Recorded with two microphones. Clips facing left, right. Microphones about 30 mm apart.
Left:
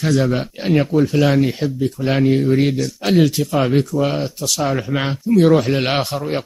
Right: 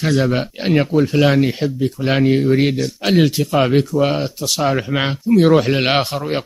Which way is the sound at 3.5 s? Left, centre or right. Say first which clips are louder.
Right 3 dB; centre.